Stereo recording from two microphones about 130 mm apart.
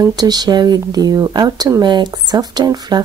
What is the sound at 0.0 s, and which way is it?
Speech, 30° right (ahead or behind).